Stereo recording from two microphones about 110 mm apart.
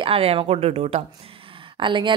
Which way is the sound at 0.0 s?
60° right (ahead or behind).